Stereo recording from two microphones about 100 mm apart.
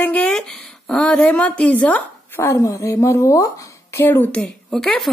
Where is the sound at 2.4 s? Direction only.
30° left (ahead or behind); by 4.8 s 15° left (ahead or behind).